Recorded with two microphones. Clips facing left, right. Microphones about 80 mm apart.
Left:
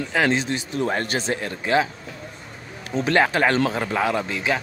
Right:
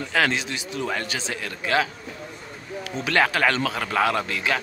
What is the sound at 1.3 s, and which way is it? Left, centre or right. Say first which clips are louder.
Speech: left 2 dB; left.